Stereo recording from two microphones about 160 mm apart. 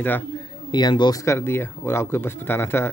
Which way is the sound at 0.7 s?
25° left (ahead or behind).